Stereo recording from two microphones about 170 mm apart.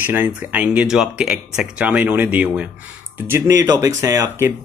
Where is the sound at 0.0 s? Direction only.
10° right (ahead or behind).